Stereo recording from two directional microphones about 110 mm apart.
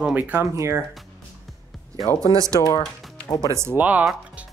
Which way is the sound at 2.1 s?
30° right (ahead or behind).